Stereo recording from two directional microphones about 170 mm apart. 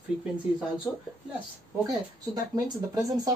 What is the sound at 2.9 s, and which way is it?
Speech, 20° right (ahead or behind).